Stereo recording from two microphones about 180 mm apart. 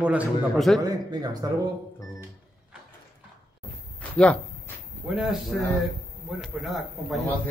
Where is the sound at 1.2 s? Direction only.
20° right (ahead or behind).